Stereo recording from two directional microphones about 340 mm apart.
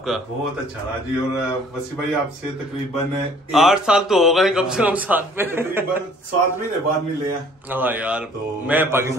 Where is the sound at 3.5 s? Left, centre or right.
Centre.